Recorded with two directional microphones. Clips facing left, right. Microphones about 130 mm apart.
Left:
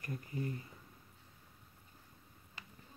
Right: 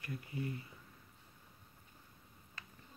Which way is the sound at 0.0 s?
40° left (ahead or behind).